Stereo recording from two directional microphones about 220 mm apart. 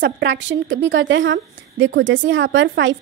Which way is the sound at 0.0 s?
55° right (ahead or behind).